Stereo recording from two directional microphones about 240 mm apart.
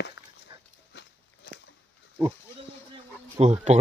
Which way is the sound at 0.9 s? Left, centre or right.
Left.